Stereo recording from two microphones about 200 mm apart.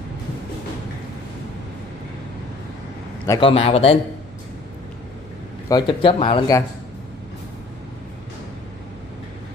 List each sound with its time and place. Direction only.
3.3 s speech: 25° left (ahead or behind)
5.7 s speech: 25° left (ahead or behind)